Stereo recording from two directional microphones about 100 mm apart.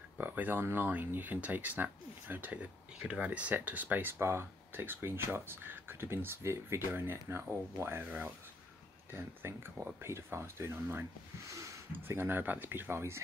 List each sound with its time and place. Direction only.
0.2 s speech: 15° right (ahead or behind)
11.9 s speech: 20° right (ahead or behind)